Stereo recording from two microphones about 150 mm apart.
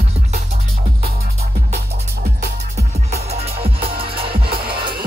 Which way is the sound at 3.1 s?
45° right (ahead or behind).